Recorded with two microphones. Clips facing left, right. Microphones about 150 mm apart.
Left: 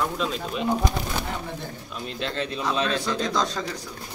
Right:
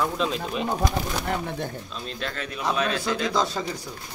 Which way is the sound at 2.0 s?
25° left (ahead or behind).